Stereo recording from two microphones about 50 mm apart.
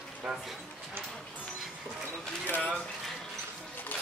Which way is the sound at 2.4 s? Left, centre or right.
Left.